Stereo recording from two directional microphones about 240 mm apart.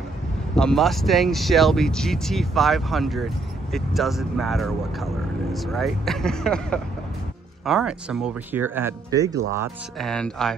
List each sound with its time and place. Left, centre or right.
0.6 s speech: centre
9.9 s speech: centre